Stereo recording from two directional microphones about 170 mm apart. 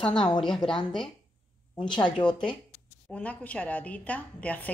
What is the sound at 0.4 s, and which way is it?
Speech, 5° left (ahead or behind).